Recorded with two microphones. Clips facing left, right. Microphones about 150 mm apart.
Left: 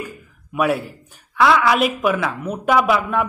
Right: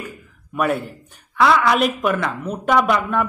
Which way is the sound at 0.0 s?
5° left (ahead or behind).